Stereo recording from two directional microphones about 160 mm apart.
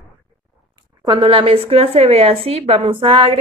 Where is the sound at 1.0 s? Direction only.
30° right (ahead or behind).